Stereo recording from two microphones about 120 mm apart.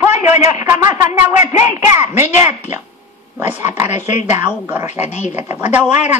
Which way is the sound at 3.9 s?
70° left (ahead or behind).